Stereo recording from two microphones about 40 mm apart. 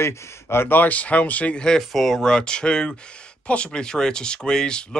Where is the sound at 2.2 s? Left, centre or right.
Left.